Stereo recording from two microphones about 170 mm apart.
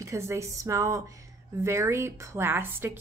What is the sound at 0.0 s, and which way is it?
Speech, 15° right (ahead or behind).